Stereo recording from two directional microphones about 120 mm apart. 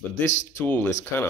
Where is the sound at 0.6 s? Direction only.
15° left (ahead or behind).